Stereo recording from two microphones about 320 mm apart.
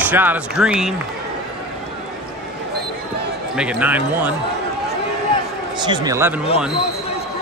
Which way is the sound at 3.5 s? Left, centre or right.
Centre.